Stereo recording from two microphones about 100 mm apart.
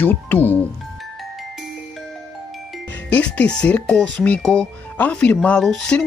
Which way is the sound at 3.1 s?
10° left (ahead or behind).